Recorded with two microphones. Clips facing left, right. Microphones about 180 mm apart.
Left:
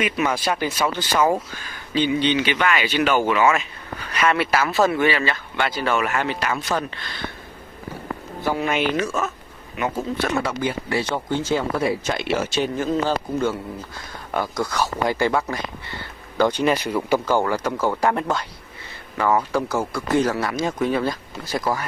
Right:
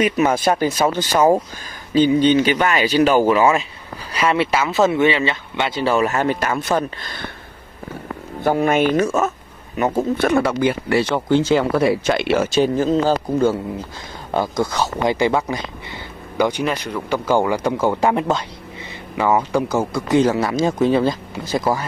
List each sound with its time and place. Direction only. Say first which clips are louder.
0.0 s speech: right 6 dB; 45° right (ahead or behind)
8.4 s speech: right 6 dB; 50° right (ahead or behind)
9.9 s speech: right 8 dB; 60° right (ahead or behind)
12.5 s speech: right 7 dB; 35° right (ahead or behind); by 16.6 s 15° right (ahead or behind)
16.6 s speech: left 2 dB; 5° left (ahead or behind)
17.2 s speech: right 3 dB; 15° right (ahead or behind)